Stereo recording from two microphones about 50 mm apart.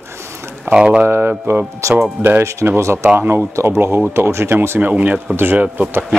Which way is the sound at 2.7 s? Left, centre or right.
Right.